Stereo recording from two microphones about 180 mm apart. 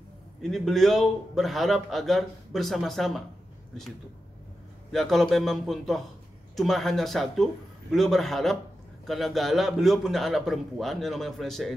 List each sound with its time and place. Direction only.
0.4 s a man's voice: centre (ahead or behind)
4.9 s a man's voice: centre (ahead or behind)